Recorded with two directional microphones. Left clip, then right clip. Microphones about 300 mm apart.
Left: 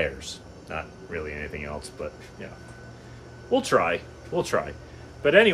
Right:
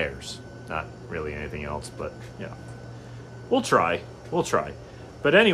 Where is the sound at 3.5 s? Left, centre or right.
Centre.